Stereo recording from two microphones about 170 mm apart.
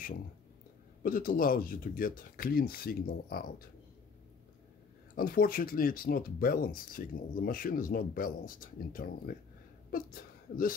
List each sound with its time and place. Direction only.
1.0 s speech: 55° left (ahead or behind)
5.1 s speech: 60° left (ahead or behind)